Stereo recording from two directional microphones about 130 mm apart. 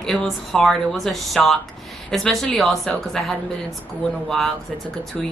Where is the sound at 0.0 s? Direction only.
Centre (ahead or behind).